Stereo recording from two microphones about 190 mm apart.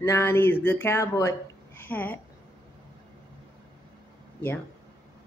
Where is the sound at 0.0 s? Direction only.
10° left (ahead or behind).